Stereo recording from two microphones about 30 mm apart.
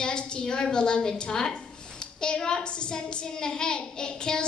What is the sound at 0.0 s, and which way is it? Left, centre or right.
A woman's voice, left.